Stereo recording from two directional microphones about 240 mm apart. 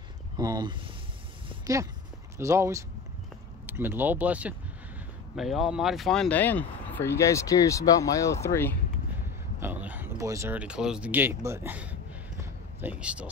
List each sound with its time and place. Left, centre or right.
0.4 s speech: centre
9.6 s speech: centre